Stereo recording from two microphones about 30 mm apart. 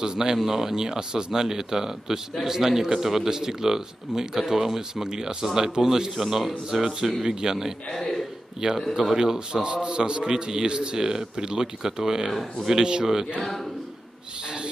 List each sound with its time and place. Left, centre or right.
0.0 s speech: right
3.3 s speech: right
6.2 s speech: centre
6.7 s a man's voice: centre
8.6 s a man's voice: right
12.3 s speech: centre
12.8 s a man's voice: right